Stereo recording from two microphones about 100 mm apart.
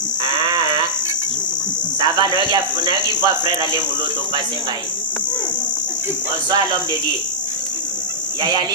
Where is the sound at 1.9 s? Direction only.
55° right (ahead or behind).